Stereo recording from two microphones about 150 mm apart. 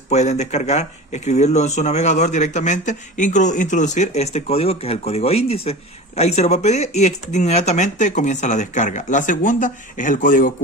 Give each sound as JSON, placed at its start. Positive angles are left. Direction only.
{"t": 0.1, "sound": "speech", "side_deg": 50}